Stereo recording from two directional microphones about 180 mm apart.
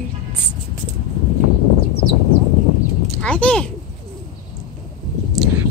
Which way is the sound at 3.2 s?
5° left (ahead or behind).